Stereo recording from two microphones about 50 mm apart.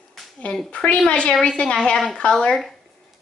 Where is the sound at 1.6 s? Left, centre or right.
Centre.